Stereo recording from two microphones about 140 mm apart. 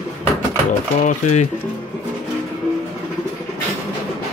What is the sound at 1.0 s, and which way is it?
Cutlery, 60° left (ahead or behind).